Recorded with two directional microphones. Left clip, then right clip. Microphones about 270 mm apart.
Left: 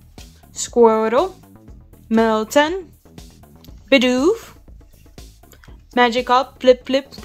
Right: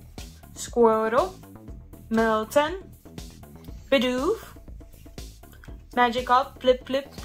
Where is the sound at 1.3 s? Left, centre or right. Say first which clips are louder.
Even; centre.